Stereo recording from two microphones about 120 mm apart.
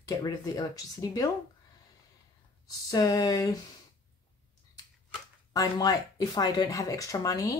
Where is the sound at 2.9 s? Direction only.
30° left (ahead or behind).